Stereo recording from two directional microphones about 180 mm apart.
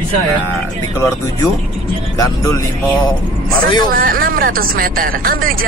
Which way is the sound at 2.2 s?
20° left (ahead or behind).